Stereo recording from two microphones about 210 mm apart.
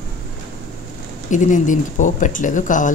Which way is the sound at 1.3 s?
35° left (ahead or behind).